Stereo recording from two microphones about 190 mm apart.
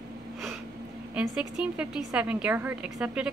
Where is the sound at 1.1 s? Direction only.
5° right (ahead or behind).